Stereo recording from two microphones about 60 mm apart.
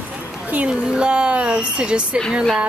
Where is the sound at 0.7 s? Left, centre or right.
Centre.